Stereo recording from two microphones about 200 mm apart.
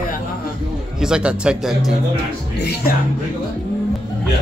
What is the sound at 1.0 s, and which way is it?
Speech, 5° right (ahead or behind).